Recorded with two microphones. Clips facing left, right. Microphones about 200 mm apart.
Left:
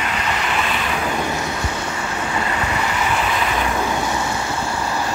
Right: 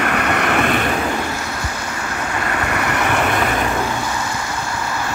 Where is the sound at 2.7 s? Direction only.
65° right (ahead or behind).